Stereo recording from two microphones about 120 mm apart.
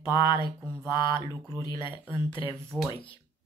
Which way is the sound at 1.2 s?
25° right (ahead or behind).